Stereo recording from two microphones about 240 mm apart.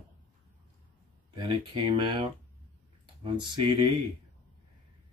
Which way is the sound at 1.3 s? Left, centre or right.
Right.